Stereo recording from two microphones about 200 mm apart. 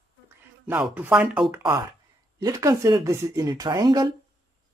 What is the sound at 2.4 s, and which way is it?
Speech, 15° right (ahead or behind).